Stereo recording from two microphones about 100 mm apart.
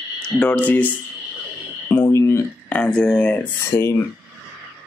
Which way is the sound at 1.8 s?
25° left (ahead or behind).